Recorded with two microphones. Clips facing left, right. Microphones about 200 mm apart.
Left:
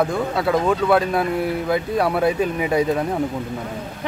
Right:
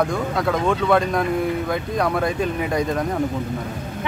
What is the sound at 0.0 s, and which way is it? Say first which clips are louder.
Speech: left 1 dB; 5° left (ahead or behind).